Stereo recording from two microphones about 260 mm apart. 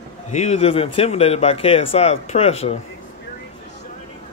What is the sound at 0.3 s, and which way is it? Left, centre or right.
A man's voice, left.